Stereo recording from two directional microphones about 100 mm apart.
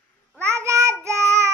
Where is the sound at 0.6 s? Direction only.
30° right (ahead or behind).